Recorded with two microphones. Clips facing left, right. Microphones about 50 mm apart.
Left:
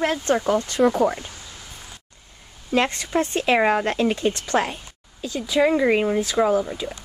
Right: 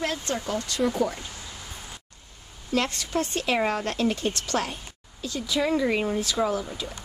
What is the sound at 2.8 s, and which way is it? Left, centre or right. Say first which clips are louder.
Speech: left 5 dB; left.